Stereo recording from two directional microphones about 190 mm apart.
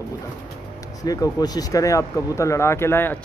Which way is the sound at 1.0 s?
20° left (ahead or behind).